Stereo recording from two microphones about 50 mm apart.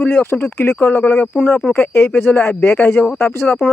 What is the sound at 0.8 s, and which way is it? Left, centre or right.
Speech, left.